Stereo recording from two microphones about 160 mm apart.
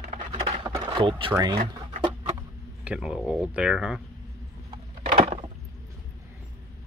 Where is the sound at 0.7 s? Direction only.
30° right (ahead or behind).